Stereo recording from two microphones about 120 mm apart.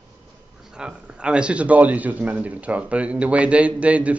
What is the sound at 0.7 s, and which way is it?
A man's voice, 5° right (ahead or behind).